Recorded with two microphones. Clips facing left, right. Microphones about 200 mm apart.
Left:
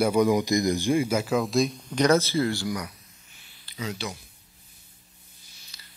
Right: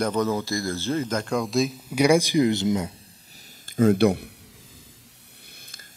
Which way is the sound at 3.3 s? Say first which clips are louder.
Right 15 dB; 50° right (ahead or behind).